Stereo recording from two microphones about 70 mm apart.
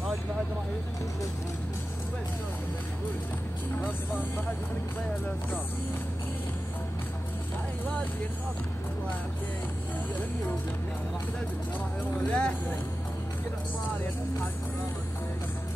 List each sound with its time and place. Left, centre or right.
12.3 s speech: centre